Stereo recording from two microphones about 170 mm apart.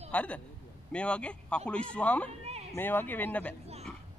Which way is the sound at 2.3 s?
40° right (ahead or behind).